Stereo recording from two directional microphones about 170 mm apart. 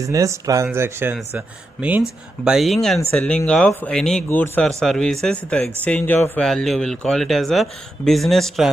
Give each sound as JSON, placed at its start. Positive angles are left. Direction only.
{"t": 0.0, "sound": "speech", "side_deg": -20}